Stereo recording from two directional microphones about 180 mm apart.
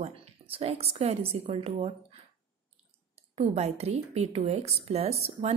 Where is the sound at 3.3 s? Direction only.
35° right (ahead or behind).